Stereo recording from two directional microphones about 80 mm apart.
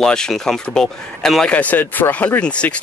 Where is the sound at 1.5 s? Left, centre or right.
Centre.